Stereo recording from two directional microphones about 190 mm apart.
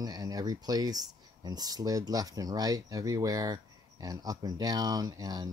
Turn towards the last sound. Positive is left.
turn(degrees=-20)  # may be behind; listen again after turning